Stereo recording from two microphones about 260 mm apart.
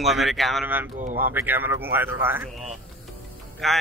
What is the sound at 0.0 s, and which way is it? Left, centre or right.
A man's voice, centre.